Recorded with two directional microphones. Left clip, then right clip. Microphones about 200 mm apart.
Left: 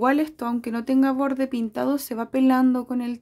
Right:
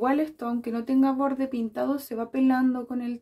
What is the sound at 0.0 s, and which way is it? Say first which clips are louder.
Speech: left 4 dB; 40° left (ahead or behind).